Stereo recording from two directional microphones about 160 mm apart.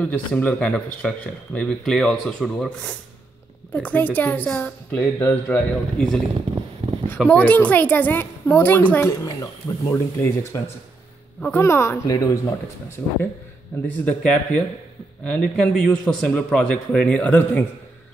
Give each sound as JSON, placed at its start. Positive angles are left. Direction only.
{"t": 0.0, "sound": "speech", "side_deg": 10}
{"t": 7.2, "sound": "speech", "side_deg": 10}
{"t": 13.8, "sound": "speech", "side_deg": 5}